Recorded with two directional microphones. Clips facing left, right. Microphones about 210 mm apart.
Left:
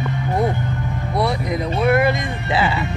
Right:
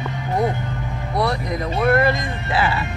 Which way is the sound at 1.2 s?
10° left (ahead or behind).